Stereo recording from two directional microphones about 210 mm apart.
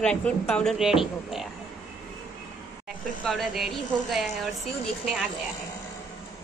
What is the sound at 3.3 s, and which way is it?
Speech, centre (ahead or behind).